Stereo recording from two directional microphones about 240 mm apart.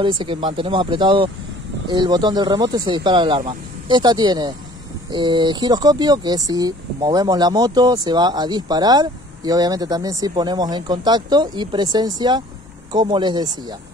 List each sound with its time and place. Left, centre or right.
0.0 s speech: centre